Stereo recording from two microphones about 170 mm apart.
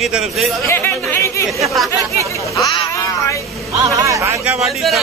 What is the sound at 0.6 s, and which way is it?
Speech, 15° left (ahead or behind).